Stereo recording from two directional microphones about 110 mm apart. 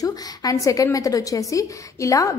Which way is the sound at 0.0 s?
30° left (ahead or behind).